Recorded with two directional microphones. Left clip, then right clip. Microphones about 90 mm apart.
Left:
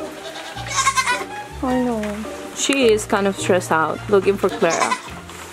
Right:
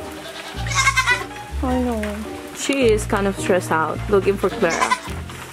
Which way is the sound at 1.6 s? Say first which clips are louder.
Left 1 dB; 25° left (ahead or behind).